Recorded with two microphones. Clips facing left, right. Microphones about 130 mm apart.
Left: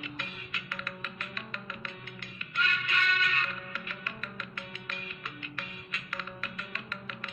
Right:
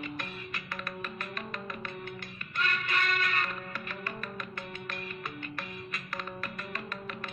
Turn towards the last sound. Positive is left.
turn(degrees=-45)  # may be behind; listen again after turning